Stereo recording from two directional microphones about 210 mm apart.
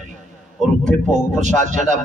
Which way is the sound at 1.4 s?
35° right (ahead or behind).